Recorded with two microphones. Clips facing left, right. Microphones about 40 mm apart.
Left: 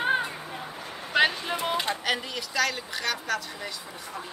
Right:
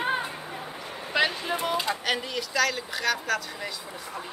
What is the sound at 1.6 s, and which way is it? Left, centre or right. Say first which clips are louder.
Speech: even; left.